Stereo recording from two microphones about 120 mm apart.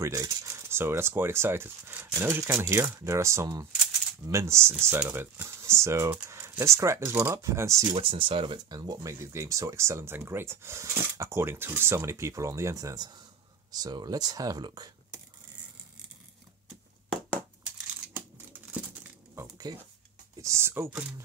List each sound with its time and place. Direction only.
0.0 s speech: 25° right (ahead or behind)
7.9 s speech: 45° right (ahead or behind)
9.2 s speech: 20° right (ahead or behind)
17.1 s a sound: 10° left (ahead or behind)
18.1 s tearing: 15° right (ahead or behind)
19.7 s speech: 35° right (ahead or behind)